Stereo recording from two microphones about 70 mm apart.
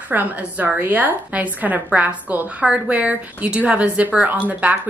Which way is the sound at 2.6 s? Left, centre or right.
Centre.